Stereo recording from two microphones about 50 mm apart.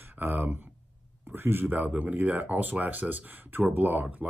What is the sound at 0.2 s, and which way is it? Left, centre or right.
Speech, right.